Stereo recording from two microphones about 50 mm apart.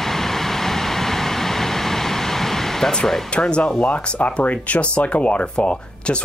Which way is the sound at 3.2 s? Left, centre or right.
Centre.